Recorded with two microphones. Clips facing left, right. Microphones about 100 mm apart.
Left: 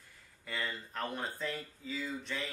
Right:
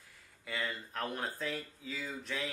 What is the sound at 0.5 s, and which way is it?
Speech, centre (ahead or behind).